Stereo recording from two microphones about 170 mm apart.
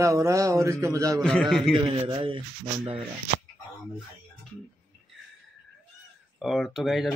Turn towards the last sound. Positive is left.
turn(degrees=0)  # may be behind; listen again after turning